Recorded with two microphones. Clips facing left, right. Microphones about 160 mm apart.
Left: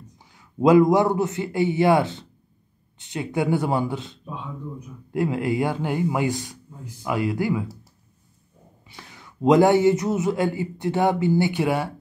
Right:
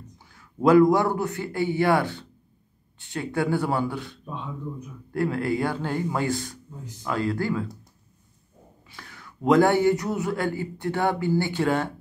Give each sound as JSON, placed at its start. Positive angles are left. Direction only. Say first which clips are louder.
{"t": 0.2, "sound": "a man's voice", "louder": "left 3 dB", "side_deg": 20}
{"t": 8.8, "sound": "a man's voice", "louder": "left 1 dB", "side_deg": 20}